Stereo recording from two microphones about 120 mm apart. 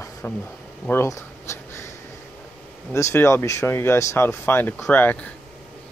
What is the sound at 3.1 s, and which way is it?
Speech, 20° left (ahead or behind).